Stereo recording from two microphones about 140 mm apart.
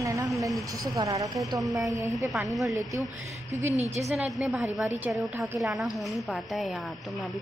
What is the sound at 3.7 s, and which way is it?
Speech, 50° right (ahead or behind).